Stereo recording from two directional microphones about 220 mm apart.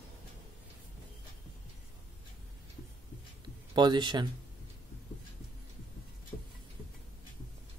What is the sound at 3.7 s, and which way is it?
Speech, 20° right (ahead or behind).